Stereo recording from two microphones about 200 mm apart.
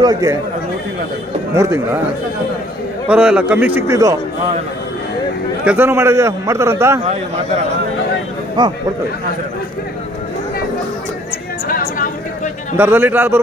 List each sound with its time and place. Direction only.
0.0 s a man's voice: 15° right (ahead or behind)
1.5 s a man's voice: 15° right (ahead or behind)
3.1 s a man's voice: 5° right (ahead or behind)
5.7 s a man's voice: 10° right (ahead or behind)
11.6 s music: 45° left (ahead or behind)
12.7 s a man's voice: 10° right (ahead or behind)